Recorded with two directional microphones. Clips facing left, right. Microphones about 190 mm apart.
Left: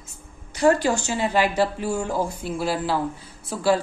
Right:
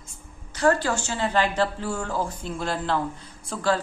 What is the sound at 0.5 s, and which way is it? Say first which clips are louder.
A woman's voice: left 3 dB; 15° left (ahead or behind).